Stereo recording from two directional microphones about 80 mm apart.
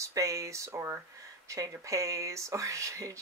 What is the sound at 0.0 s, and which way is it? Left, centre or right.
Speech, right.